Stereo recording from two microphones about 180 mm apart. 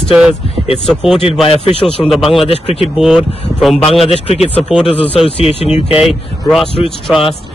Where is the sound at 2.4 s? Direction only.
35° left (ahead or behind).